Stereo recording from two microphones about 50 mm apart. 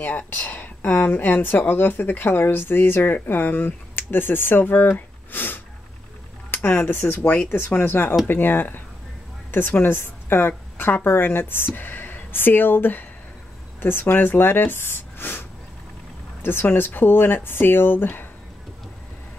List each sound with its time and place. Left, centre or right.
0.3 s a woman's voice: left
16.4 s speech: left